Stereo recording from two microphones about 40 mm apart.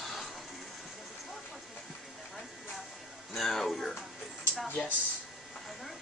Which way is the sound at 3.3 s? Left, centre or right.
Centre.